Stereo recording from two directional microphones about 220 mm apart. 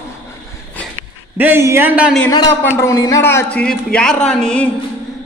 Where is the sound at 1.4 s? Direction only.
10° right (ahead or behind).